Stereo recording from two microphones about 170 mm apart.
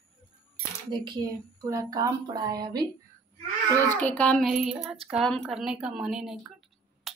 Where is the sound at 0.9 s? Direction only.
25° right (ahead or behind).